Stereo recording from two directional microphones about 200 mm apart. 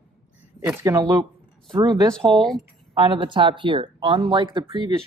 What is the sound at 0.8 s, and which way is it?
Speech, 15° right (ahead or behind).